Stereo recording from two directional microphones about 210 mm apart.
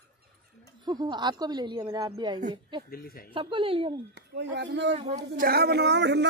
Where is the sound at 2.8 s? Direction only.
45° left (ahead or behind).